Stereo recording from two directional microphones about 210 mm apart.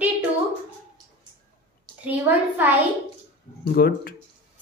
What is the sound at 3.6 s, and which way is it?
Speech, 50° left (ahead or behind).